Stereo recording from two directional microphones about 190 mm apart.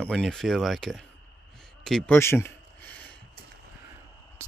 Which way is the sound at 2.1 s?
10° left (ahead or behind).